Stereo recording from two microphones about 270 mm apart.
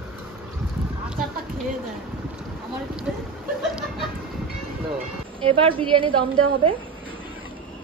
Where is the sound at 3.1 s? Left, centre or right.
Centre.